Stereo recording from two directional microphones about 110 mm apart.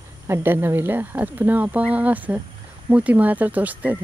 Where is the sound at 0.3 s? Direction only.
20° right (ahead or behind).